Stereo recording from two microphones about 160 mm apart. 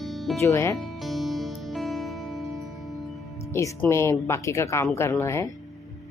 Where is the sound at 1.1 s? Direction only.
Centre (ahead or behind).